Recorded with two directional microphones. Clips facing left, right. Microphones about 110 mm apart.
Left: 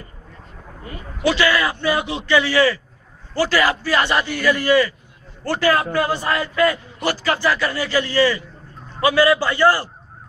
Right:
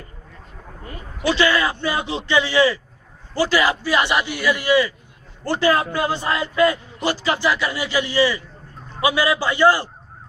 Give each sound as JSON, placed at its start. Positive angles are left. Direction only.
{"t": 1.3, "sound": "a man's voice", "side_deg": -25}